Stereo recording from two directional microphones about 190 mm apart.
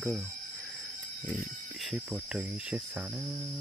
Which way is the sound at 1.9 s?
5° right (ahead or behind).